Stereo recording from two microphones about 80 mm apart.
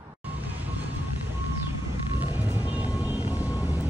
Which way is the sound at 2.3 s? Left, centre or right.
Right.